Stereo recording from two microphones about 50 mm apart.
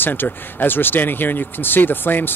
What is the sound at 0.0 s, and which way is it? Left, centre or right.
Speech, left.